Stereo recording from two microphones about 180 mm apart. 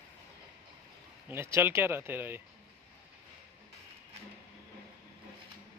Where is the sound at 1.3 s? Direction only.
15° right (ahead or behind).